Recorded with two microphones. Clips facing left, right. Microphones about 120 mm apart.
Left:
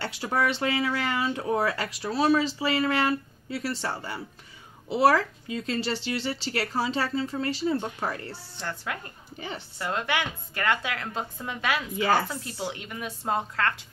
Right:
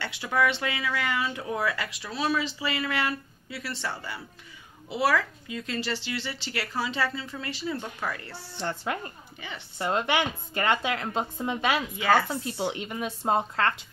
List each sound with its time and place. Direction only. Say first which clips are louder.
0.0 s speech: right 1 dB; 35° left (ahead or behind)
8.5 s a woman's voice: right 4 dB; 25° right (ahead or behind)